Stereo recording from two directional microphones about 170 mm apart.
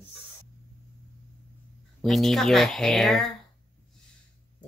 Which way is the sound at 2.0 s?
Centre (ahead or behind).